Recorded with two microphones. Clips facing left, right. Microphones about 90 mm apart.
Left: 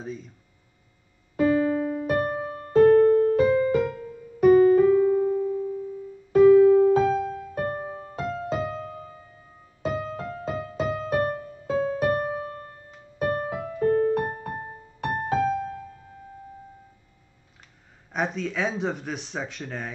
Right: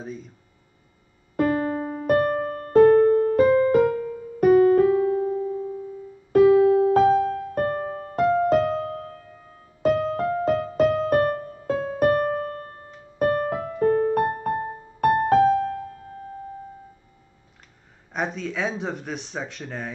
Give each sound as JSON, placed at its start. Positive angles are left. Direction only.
{"t": 0.0, "sound": "speech", "side_deg": 0}
{"t": 1.3, "sound": "music", "side_deg": -50}
{"t": 3.7, "sound": "music", "side_deg": -50}
{"t": 6.3, "sound": "music", "side_deg": -55}
{"t": 10.8, "sound": "music", "side_deg": -80}
{"t": 11.1, "sound": "music", "side_deg": -50}
{"t": 18.1, "sound": "speech", "side_deg": 0}